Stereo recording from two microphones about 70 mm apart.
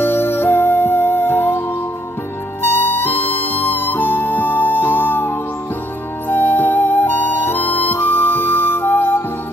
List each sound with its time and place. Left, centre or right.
0.0 s music: left
2.6 s music: left
6.2 s flute: left